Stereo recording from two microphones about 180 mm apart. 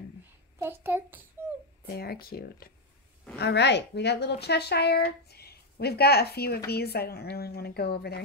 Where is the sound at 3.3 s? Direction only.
70° left (ahead or behind).